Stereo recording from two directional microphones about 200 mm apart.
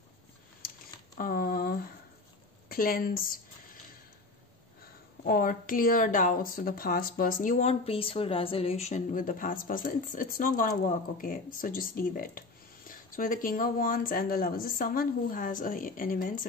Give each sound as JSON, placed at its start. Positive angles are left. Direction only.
{"t": 1.1, "sound": "a sound", "side_deg": 45}
{"t": 2.7, "sound": "speech", "side_deg": 45}
{"t": 5.2, "sound": "speech", "side_deg": 45}